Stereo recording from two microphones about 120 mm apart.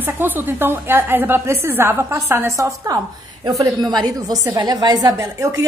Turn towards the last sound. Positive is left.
turn(degrees=-25)  # may be behind; listen again after turning